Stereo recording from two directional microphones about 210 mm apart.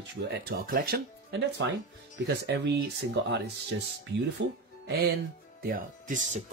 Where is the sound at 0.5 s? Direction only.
45° right (ahead or behind).